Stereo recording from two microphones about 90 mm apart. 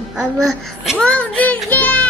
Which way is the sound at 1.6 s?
15° left (ahead or behind).